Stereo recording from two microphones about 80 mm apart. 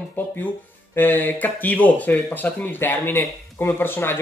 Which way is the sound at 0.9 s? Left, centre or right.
Left.